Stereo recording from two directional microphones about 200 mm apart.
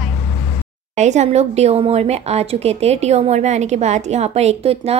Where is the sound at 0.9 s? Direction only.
35° right (ahead or behind).